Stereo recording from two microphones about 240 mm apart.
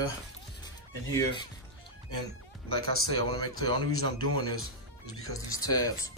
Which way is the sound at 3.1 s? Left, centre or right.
Centre.